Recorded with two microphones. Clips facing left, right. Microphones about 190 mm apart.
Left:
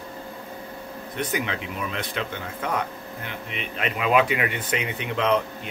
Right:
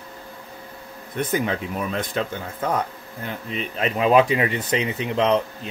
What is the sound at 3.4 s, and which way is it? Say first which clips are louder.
Speech: right 4 dB; 35° right (ahead or behind).